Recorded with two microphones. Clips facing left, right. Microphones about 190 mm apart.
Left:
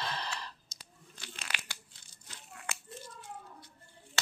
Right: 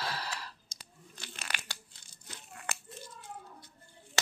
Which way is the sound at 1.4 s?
45° right (ahead or behind).